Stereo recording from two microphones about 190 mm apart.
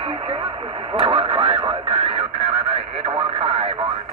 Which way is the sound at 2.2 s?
5° right (ahead or behind).